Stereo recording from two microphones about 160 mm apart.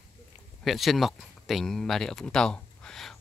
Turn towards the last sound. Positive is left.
turn(degrees=5)  # may be behind; listen again after turning